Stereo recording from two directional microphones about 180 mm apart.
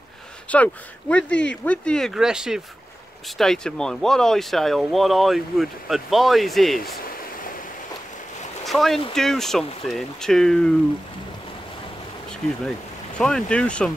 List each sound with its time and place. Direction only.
0.5 s speech: 10° left (ahead or behind)
8.6 s speech: centre (ahead or behind)
13.2 s speech: 5° left (ahead or behind)